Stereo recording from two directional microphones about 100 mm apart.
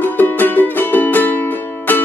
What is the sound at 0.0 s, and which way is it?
Music, 20° left (ahead or behind).